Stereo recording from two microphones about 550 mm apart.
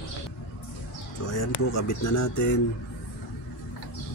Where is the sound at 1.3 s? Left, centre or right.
Left.